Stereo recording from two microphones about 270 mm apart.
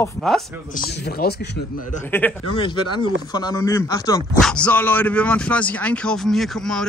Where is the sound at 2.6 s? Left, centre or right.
Centre.